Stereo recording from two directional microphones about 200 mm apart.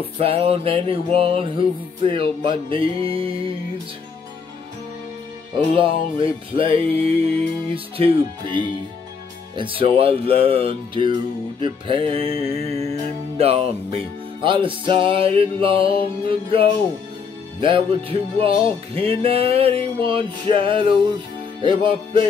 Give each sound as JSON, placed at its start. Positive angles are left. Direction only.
{"t": 0.2, "sound": "music", "side_deg": -30}
{"t": 5.8, "sound": "music", "side_deg": -25}
{"t": 9.6, "sound": "music", "side_deg": -25}